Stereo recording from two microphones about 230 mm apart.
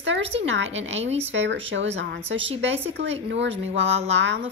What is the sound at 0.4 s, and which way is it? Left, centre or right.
A woman's voice, right.